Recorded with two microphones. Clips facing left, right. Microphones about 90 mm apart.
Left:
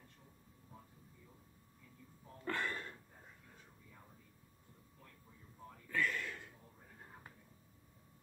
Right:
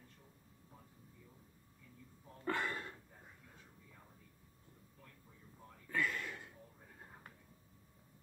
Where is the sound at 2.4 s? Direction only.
15° right (ahead or behind).